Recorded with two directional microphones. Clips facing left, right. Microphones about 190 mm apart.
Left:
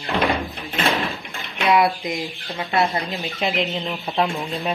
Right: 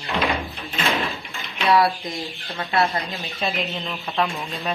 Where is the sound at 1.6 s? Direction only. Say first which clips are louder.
Left 1 dB; 20° left (ahead or behind).